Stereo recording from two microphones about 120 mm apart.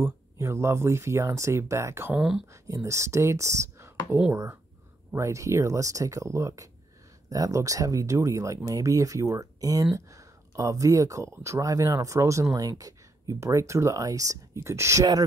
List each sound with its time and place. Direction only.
0.0 s speech: 25° right (ahead or behind)